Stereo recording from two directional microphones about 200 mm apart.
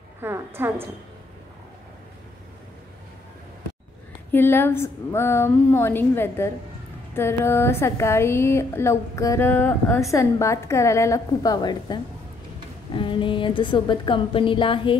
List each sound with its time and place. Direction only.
0.2 s a woman's voice: 10° right (ahead or behind)
4.3 s speech: 10° left (ahead or behind); by 15.0 s 25° left (ahead or behind)